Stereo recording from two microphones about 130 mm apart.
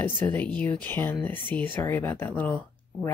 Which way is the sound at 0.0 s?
15° left (ahead or behind).